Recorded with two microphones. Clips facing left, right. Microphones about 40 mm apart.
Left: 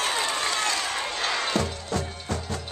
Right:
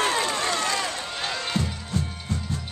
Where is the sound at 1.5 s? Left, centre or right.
Left.